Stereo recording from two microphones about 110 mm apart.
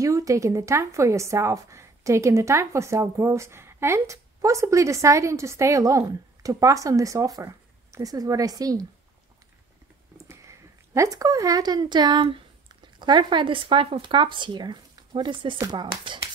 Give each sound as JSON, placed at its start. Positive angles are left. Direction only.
{"t": 0.0, "sound": "a woman's voice", "side_deg": -30}
{"t": 10.2, "sound": "a woman's voice", "side_deg": -30}